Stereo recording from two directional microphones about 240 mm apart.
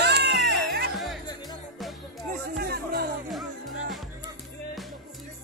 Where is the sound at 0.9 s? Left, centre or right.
Centre.